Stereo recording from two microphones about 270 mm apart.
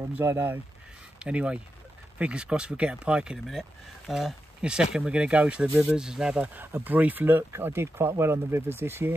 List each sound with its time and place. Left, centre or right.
0.1 s speech: centre